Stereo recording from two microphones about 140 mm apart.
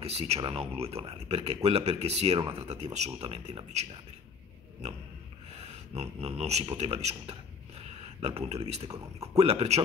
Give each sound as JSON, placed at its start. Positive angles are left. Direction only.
{"t": 0.0, "sound": "speech", "side_deg": -45}
{"t": 5.9, "sound": "speech", "side_deg": -50}
{"t": 8.9, "sound": "speech", "side_deg": -25}
{"t": 9.4, "sound": "speech", "side_deg": -45}